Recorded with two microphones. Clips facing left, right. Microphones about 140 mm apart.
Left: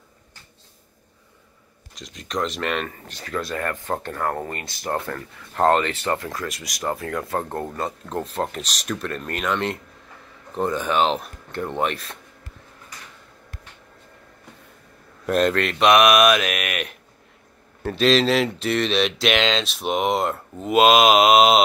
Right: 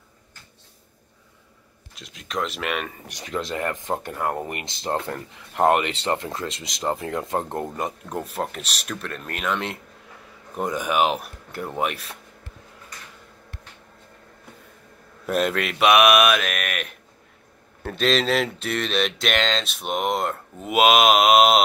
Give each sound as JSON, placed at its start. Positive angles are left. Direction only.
{"t": 2.0, "sound": "speech", "side_deg": -5}
{"t": 15.2, "sound": "speech", "side_deg": -5}